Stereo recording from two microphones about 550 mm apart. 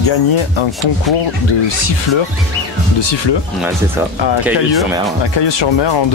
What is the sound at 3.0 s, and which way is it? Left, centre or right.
Speech, left.